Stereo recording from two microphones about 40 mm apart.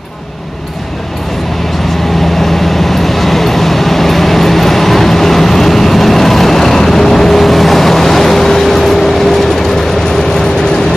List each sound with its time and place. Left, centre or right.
2.4 s vehicle: centre